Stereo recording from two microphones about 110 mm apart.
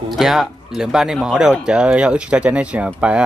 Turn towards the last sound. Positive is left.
turn(degrees=-10)  # may be behind; listen again after turning